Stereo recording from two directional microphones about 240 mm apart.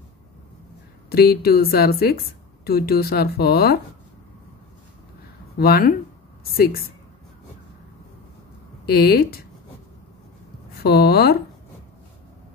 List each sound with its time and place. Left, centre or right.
1.1 s a woman's voice: left
5.6 s a woman's voice: left
8.8 s speech: left
10.8 s a woman's voice: left